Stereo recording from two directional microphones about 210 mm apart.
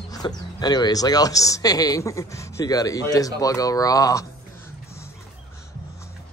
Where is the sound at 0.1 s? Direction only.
20° left (ahead or behind).